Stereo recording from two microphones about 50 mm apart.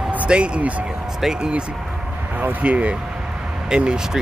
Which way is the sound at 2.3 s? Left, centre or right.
Right.